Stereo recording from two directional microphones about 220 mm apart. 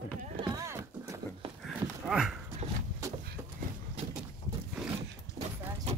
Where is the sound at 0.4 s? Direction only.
15° right (ahead or behind).